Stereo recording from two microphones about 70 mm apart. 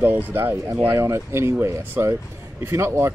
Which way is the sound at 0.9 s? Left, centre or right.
Right.